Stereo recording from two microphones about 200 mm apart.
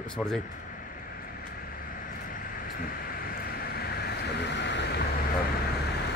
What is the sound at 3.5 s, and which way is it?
Vehicle, 50° left (ahead or behind).